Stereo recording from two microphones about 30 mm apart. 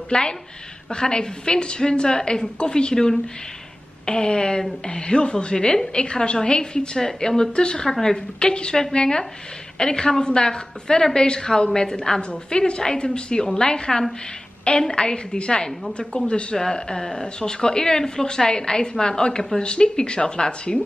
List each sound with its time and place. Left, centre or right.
0.1 s a woman's voice: left
16.5 s speech: left